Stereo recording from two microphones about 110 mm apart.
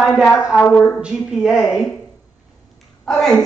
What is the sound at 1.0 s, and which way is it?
Speech, 5° right (ahead or behind).